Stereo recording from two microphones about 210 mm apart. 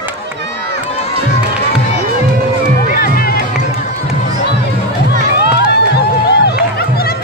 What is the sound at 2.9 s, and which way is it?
Crowd, 45° left (ahead or behind).